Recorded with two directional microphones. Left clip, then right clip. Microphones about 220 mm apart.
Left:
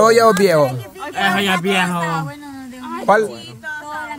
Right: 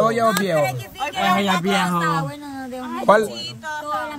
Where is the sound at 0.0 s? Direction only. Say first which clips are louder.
Left 7 dB; 55° left (ahead or behind).